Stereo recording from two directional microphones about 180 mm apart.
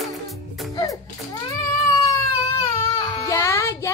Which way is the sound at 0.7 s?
20° left (ahead or behind).